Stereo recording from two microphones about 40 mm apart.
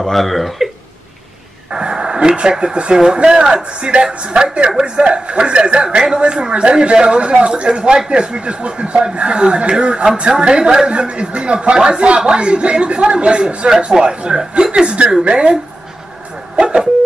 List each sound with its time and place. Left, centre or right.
0.0 s speech: centre
1.7 s a man's voice: right
16.5 s a sound: right